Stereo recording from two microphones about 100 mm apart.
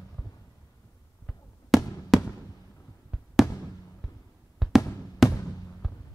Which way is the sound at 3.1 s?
5° right (ahead or behind).